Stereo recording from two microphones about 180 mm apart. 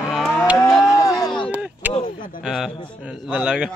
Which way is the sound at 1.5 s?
10° right (ahead or behind).